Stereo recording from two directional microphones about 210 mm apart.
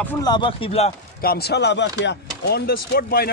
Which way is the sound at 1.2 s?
50° left (ahead or behind).